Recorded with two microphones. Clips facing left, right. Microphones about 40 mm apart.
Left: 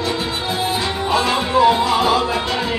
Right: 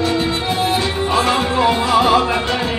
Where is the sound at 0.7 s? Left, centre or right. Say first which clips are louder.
Right 2 dB; right.